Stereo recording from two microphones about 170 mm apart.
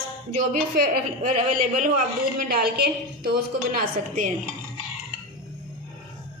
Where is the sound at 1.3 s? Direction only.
50° right (ahead or behind).